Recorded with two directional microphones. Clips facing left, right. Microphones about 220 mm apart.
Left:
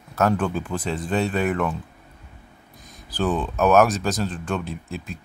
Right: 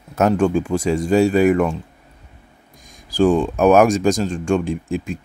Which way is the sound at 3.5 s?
15° right (ahead or behind).